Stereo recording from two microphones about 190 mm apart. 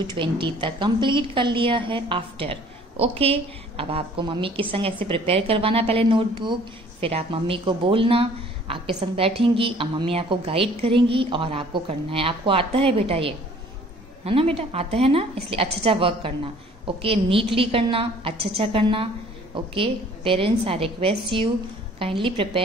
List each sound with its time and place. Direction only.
0.0 s a woman's voice: 25° right (ahead or behind)